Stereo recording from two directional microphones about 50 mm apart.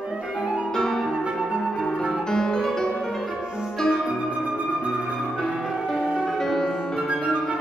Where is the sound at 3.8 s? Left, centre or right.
Centre.